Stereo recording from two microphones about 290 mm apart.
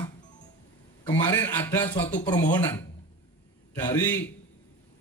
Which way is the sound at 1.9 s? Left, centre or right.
Left.